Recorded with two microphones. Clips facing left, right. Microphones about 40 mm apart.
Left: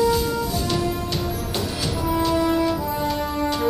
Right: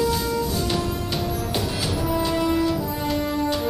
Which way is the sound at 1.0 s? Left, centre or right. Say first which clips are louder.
Even; centre.